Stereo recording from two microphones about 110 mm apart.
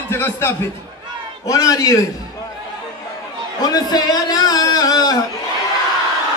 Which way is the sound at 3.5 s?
35° left (ahead or behind).